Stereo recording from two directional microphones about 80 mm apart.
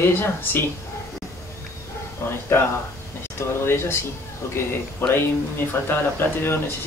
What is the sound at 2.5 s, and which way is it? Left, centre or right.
Speech, left.